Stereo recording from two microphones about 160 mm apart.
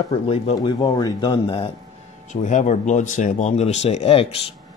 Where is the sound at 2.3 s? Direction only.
50° left (ahead or behind).